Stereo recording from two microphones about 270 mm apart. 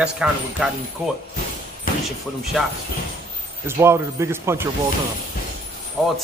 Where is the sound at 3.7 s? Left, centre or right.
Centre.